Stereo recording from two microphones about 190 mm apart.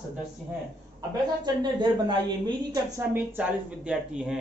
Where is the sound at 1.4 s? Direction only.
25° right (ahead or behind); by 4.4 s 5° right (ahead or behind).